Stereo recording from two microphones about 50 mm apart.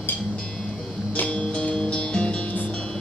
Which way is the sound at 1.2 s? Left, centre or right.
Left.